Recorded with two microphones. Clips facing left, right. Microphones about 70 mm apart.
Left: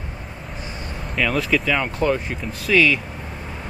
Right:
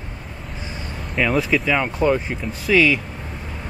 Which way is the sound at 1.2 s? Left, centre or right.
Centre.